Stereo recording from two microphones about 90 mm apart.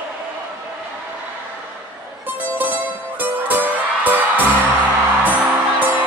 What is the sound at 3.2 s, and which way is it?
Music, 20° right (ahead or behind).